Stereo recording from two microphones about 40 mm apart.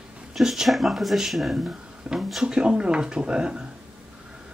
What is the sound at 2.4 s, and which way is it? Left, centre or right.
Speech, right.